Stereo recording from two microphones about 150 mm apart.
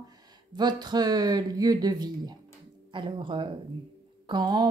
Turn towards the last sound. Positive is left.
turn(degrees=-30)  # may be behind; listen again after turning